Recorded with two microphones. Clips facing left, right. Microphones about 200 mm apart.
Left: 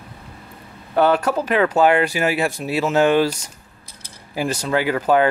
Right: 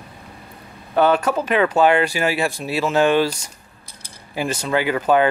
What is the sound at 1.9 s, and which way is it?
Speech, 30° right (ahead or behind).